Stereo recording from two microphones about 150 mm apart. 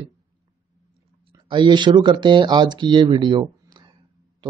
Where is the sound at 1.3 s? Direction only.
30° right (ahead or behind).